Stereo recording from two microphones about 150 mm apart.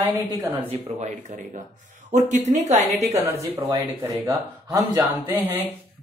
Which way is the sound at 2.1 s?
50° right (ahead or behind).